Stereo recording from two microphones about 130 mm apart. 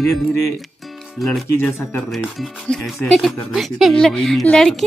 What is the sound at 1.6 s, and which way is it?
Speech, 15° left (ahead or behind).